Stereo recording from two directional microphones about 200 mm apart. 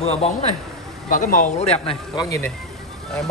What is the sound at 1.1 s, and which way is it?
Speech, 40° left (ahead or behind).